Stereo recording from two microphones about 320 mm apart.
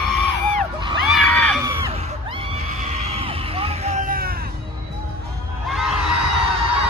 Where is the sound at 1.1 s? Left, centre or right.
Centre.